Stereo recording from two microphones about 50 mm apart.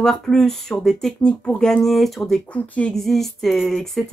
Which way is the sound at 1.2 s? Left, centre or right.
Left.